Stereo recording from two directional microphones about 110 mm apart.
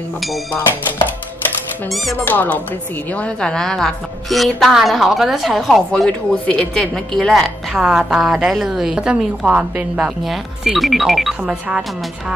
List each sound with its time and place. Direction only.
2.2 s a woman's voice: 15° left (ahead or behind); by 11.3 s centre (ahead or behind)